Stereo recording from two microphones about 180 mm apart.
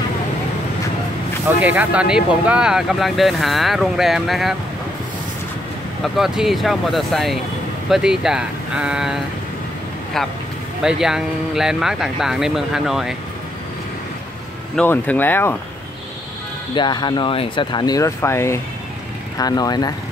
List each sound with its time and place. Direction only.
1.6 s speech: 10° right (ahead or behind)
6.1 s speech: centre (ahead or behind)
10.8 s speech: 5° right (ahead or behind)
14.8 s speech: 10° left (ahead or behind)
16.7 s speech: 25° left (ahead or behind)